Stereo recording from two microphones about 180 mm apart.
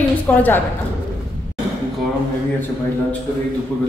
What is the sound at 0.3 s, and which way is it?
Speech, 10° left (ahead or behind).